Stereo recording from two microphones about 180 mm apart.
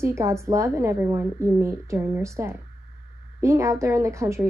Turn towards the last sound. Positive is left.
turn(degrees=-15)  # may be behind; listen again after turning